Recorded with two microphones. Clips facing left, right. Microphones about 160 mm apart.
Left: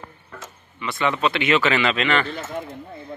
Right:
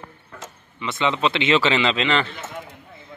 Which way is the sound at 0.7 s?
20° right (ahead or behind).